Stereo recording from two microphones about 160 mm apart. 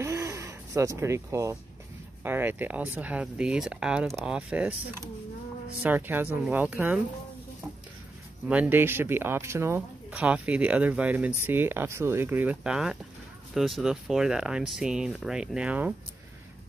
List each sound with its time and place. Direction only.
0.0 s a sound: 20° right (ahead or behind)
2.2 s speech: 10° right (ahead or behind)
5.8 s speech: 10° right (ahead or behind)
8.5 s speech: 10° right (ahead or behind)